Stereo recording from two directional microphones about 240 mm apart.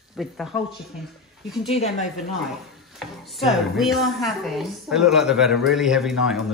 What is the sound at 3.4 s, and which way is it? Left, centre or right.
A woman's voice, centre.